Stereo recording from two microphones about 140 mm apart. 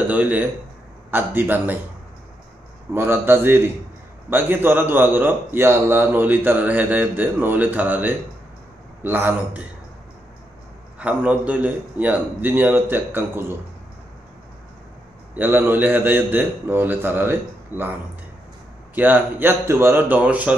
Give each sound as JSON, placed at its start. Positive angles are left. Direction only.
{"t": 0.0, "sound": "a man's voice", "side_deg": -10}
{"t": 2.9, "sound": "a man's voice", "side_deg": -15}
{"t": 11.0, "sound": "a man's voice", "side_deg": -10}
{"t": 15.3, "sound": "a man's voice", "side_deg": -15}
{"t": 18.9, "sound": "a man's voice", "side_deg": -15}